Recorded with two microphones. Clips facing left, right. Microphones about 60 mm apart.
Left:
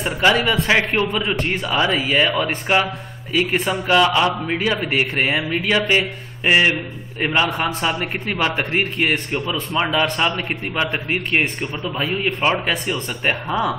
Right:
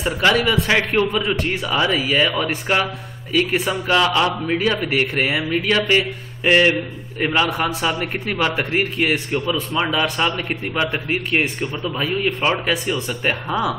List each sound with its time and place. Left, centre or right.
0.2 s a man's voice: centre
3.5 s speech: centre
3.9 s a man's voice: centre